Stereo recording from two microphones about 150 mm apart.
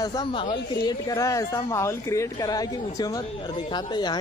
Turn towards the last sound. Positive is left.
turn(degrees=30)  # may be behind; listen again after turning